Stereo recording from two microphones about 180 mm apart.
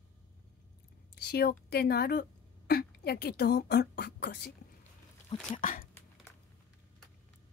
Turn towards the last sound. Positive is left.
turn(degrees=50)  # may be behind; listen again after turning